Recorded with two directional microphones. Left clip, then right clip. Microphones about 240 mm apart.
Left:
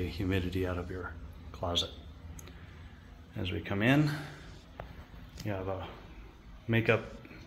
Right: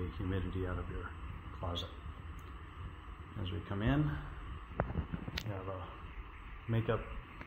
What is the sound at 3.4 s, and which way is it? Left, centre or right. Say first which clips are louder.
Speech: left 8 dB; left.